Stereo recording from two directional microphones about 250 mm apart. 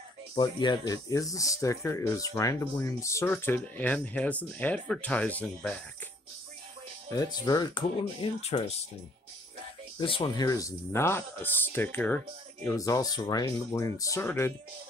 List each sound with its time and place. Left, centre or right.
0.4 s speech: centre
7.1 s speech: centre
9.9 s speech: centre